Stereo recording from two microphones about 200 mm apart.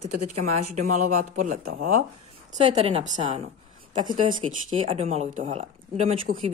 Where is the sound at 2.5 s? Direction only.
30° right (ahead or behind).